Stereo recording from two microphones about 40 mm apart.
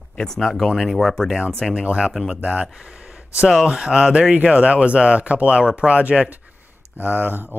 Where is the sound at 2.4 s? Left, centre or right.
Right.